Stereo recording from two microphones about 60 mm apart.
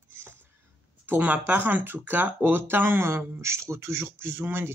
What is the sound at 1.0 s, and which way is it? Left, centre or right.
Speech, right.